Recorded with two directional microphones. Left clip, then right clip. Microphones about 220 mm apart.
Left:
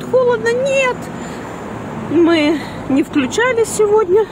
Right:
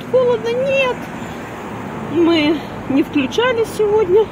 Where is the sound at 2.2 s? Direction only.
25° left (ahead or behind).